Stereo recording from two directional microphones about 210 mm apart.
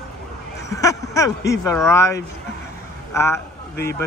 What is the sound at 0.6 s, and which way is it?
Speech, 15° left (ahead or behind).